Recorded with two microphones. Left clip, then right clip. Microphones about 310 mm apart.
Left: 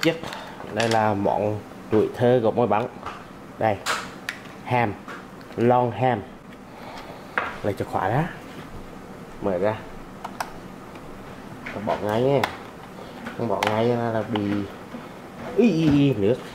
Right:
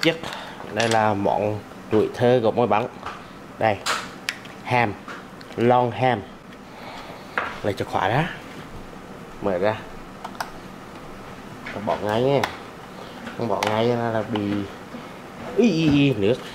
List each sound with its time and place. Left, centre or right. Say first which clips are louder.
0.0 s speech: right 1 dB; centre
1.1 s speech: right 1 dB; left
2.1 s speech: right 2 dB; centre
3.5 s a sound: right 1 dB; centre
5.6 s speech: right 1 dB; centre
7.3 s speech: right 1 dB; centre
9.5 s speech: right 1 dB; centre
11.6 s speech: right 1 dB; centre
13.6 s speech: right 1 dB; centre